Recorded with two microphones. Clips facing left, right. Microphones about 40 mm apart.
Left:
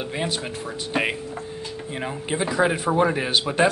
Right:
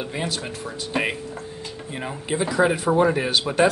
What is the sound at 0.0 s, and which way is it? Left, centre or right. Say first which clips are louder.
Speech: left 1 dB; centre.